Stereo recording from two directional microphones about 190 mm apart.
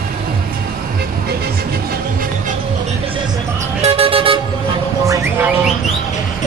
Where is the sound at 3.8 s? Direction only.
30° right (ahead or behind).